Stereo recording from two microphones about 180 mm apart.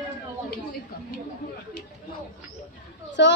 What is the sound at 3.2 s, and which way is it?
Speech, 75° left (ahead or behind).